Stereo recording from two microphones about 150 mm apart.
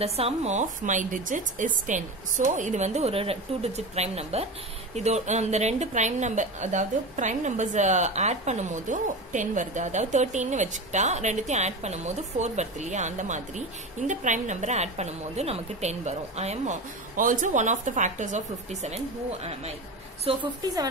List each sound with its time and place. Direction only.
0.0 s a woman's voice: 45° right (ahead or behind)
20.3 s a woman's voice: 40° right (ahead or behind)